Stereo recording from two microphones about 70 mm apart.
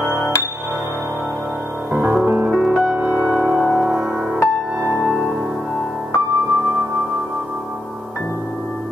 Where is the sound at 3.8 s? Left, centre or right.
Centre.